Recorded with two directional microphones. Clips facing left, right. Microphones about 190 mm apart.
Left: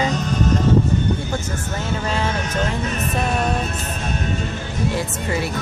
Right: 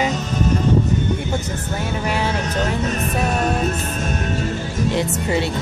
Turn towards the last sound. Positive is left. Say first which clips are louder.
# right 3 dB
turn(degrees=-25)  # may be behind; listen again after turning